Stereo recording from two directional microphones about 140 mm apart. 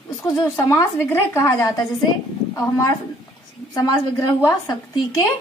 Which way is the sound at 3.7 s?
25° left (ahead or behind).